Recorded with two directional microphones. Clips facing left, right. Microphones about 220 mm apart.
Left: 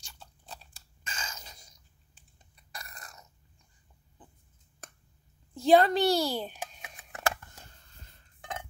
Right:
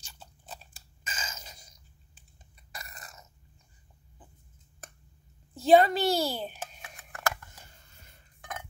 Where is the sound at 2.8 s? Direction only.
Centre (ahead or behind).